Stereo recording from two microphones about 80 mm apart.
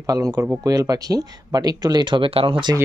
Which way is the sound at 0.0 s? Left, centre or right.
Right.